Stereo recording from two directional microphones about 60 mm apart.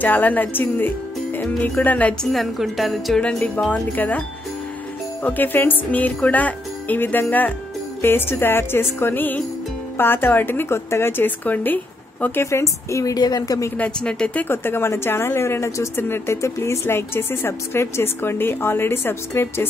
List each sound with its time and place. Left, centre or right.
0.0 s speech: left
2.3 s jingle bell: centre
3.2 s speech: left
5.2 s speech: left
8.0 s speech: left
12.4 s a woman's voice: left
13.7 s speech: left
14.5 s a woman's voice: left
16.0 s speech: left
16.3 s a woman's voice: left